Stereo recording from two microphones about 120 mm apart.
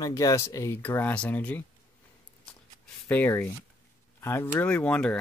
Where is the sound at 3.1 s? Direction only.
15° left (ahead or behind).